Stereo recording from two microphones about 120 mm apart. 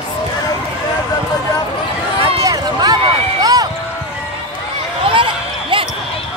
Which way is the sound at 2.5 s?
35° right (ahead or behind).